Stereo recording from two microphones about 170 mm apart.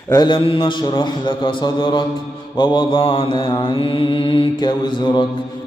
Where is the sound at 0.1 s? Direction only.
25° left (ahead or behind).